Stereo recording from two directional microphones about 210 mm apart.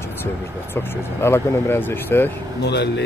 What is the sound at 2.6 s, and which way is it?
Speech, 50° left (ahead or behind).